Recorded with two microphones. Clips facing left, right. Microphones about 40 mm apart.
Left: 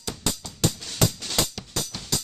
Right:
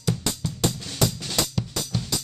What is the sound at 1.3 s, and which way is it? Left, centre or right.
Drum, centre.